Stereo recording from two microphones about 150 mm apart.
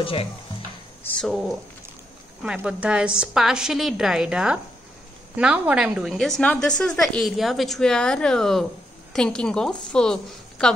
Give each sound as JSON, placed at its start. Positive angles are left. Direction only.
{"t": 0.0, "sound": "speech", "side_deg": 40}
{"t": 1.0, "sound": "speech", "side_deg": 5}
{"t": 2.4, "sound": "a woman's voice", "side_deg": -10}